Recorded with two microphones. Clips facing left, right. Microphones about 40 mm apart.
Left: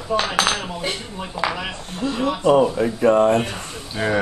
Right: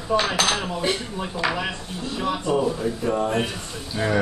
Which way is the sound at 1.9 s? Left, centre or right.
Left.